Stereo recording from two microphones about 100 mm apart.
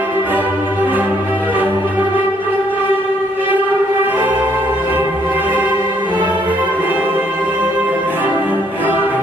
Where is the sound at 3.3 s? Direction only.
20° right (ahead or behind).